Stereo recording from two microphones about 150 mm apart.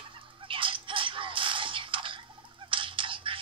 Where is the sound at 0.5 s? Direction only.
35° right (ahead or behind).